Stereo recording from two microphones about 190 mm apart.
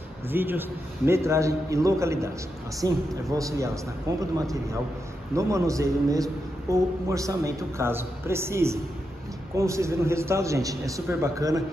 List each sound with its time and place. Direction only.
0.3 s speech: 10° right (ahead or behind)
5.3 s speech: 15° right (ahead or behind)